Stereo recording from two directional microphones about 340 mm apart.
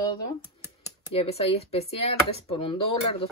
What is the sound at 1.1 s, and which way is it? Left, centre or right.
Speech, centre.